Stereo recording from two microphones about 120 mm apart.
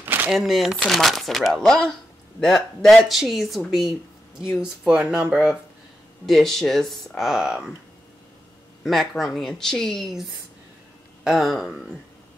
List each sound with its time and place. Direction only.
0.0 s a sound: 15° right (ahead or behind)
0.3 s speech: 5° right (ahead or behind)
8.8 s speech: centre (ahead or behind)